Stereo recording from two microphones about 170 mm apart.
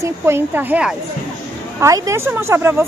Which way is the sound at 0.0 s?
15° right (ahead or behind).